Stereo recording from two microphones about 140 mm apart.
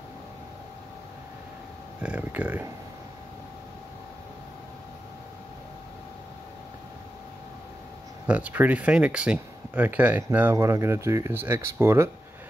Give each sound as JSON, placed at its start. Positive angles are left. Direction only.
{"t": 2.0, "sound": "speech", "side_deg": -10}
{"t": 8.3, "sound": "speech", "side_deg": -10}